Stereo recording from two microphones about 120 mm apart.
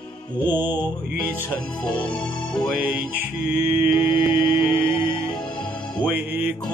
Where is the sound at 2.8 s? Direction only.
15° right (ahead or behind).